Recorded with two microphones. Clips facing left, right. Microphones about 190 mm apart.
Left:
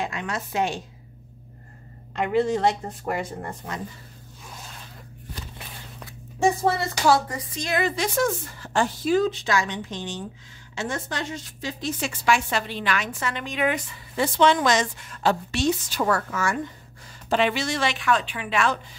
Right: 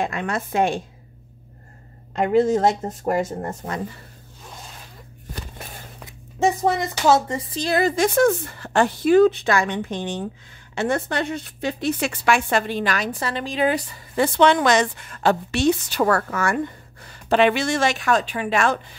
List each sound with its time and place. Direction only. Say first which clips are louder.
0.0 s speech: right 5 dB; 55° right (ahead or behind)
2.1 s speech: right 5 dB; 40° right (ahead or behind)
5.3 s a sound: right 4 dB; 45° right (ahead or behind)
6.0 s a woman's voice: right 1 dB; 20° right (ahead or behind); by 13.9 s 35° right (ahead or behind)
14.1 s a woman's voice: right 3 dB; 60° right (ahead or behind)